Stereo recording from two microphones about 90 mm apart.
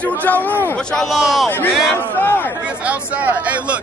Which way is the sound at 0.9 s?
5° left (ahead or behind).